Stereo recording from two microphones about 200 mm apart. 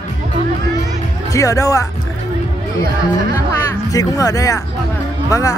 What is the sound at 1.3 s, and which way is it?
Speech, 15° left (ahead or behind).